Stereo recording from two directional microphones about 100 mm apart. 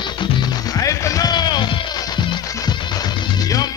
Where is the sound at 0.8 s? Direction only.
35° left (ahead or behind).